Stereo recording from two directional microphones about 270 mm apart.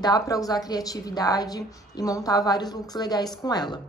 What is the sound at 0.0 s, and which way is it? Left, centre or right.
A woman's voice, centre.